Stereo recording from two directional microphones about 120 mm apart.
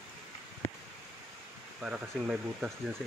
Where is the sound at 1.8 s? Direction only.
10° right (ahead or behind).